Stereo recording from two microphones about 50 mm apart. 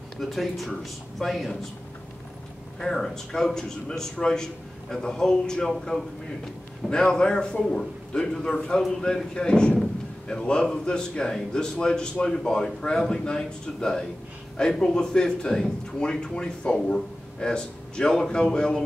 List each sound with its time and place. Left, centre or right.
0.2 s speech: centre
2.8 s speech: centre
5.9 s speech: left
6.9 s speech: centre